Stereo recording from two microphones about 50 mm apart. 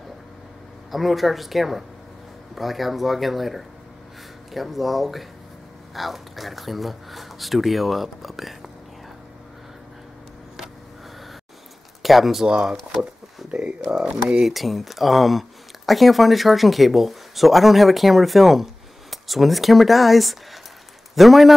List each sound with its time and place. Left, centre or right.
0.9 s speech: centre
12.0 s speech: centre
12.4 s a man's voice: centre